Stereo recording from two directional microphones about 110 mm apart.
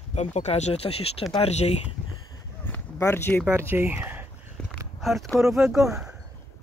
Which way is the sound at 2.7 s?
20° left (ahead or behind).